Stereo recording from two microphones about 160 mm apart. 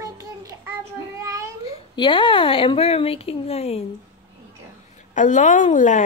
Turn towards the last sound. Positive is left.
turn(degrees=50)  # may be behind; listen again after turning